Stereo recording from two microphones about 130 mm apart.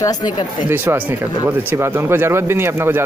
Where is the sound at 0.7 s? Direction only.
15° right (ahead or behind).